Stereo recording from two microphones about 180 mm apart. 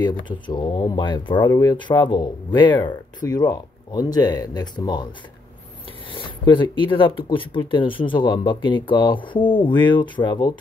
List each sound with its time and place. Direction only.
0.5 s speech: 25° left (ahead or behind)
6.1 s speech: 25° left (ahead or behind)